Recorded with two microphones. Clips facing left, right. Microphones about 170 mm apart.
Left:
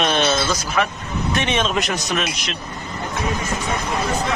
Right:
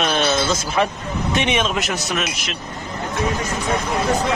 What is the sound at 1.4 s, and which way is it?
Speech, 10° right (ahead or behind).